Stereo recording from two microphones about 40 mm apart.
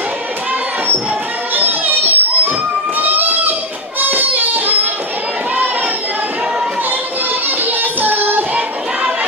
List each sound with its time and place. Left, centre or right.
1.5 s music: right
3.0 s a sound: right
7.4 s music: right